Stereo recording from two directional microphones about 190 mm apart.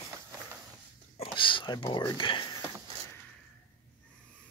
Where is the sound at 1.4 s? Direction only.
25° left (ahead or behind).